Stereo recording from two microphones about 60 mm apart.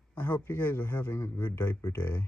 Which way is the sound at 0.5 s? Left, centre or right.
Left.